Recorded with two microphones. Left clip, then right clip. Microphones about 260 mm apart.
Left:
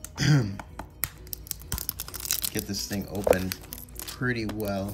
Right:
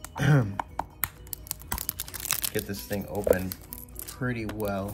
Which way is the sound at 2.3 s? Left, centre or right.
Centre.